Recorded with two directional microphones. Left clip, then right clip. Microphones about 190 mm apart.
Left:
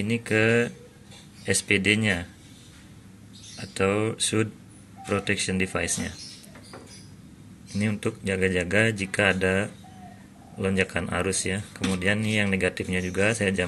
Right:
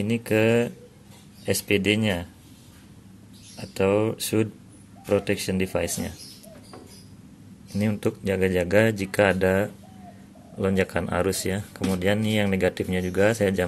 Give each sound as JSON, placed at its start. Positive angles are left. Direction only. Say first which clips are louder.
{"t": 0.0, "sound": "speech", "louder": "right 1 dB", "side_deg": -15}
{"t": 3.5, "sound": "speech", "louder": "right 3 dB", "side_deg": -15}
{"t": 7.7, "sound": "speech", "louder": "right 2 dB", "side_deg": -15}